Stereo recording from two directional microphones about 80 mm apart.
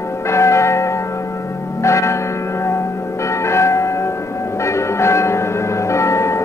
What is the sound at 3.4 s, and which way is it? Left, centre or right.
Church bell, left.